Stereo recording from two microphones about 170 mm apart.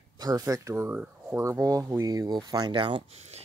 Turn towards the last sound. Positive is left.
turn(degrees=-30)  # may be behind; listen again after turning